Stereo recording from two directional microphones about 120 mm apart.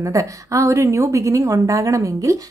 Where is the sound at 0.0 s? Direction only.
25° right (ahead or behind).